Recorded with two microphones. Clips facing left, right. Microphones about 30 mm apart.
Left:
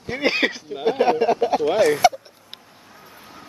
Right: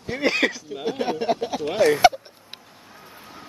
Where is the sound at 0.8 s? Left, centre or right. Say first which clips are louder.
Left 6 dB; left.